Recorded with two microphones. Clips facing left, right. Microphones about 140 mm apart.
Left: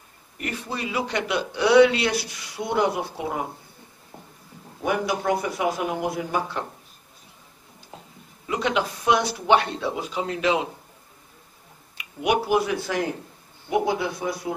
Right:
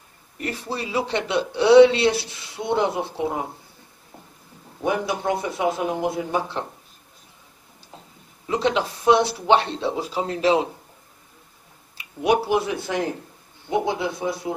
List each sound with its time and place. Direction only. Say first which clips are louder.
0.4 s a man's voice: right 2 dB; 35° right (ahead or behind)
5.2 s a man's voice: right 1 dB; 25° right (ahead or behind)
8.5 s speech: right 2 dB; 30° right (ahead or behind)
12.0 s a sound: right 3 dB; 30° right (ahead or behind)
12.4 s a man's voice: even; 25° right (ahead or behind)